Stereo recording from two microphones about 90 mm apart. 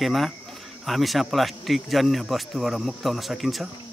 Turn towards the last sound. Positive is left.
turn(degrees=0)  # may be behind; listen again after turning